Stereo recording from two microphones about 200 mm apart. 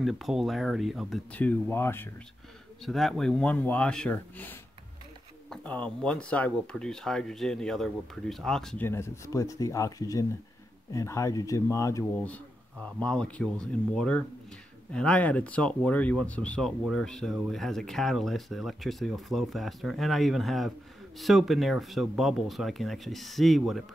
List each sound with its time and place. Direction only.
0.0 s speech: centre (ahead or behind)
2.8 s speech: centre (ahead or behind)